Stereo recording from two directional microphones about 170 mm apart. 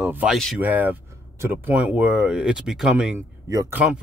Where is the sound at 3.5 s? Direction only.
20° right (ahead or behind).